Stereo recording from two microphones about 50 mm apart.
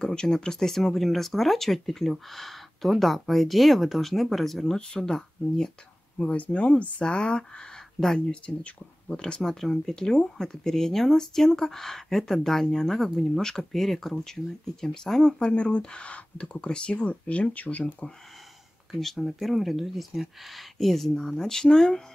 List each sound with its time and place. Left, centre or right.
0.0 s speech: centre
4.7 s speech: centre
6.1 s speech: left
18.9 s speech: centre